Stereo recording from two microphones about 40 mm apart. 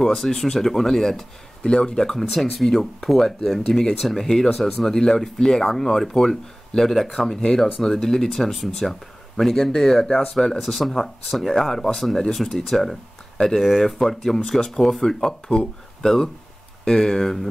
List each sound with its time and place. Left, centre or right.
0.0 s speech: centre
1.7 s speech: left
2.6 s speech: centre
10.6 s speech: centre